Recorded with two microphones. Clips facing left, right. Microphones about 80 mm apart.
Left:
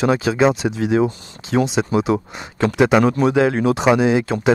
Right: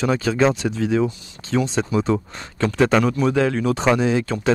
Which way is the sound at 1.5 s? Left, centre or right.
Left.